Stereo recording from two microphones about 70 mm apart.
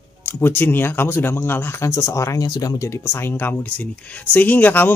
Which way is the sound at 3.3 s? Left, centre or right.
Left.